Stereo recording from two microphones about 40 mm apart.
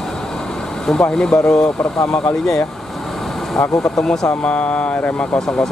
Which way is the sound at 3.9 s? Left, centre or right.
Centre.